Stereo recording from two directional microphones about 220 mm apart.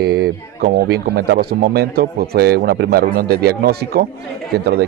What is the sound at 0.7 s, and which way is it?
Speech, 50° right (ahead or behind).